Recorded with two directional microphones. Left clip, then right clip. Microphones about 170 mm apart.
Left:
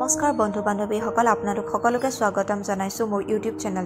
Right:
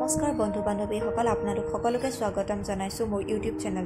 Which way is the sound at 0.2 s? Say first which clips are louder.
Left 5 dB; 10° left (ahead or behind).